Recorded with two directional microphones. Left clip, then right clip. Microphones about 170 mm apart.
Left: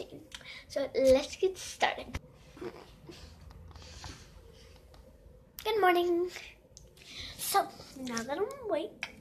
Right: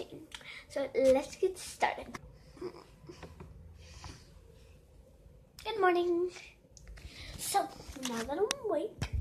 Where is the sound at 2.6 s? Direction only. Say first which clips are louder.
Even; 15° left (ahead or behind).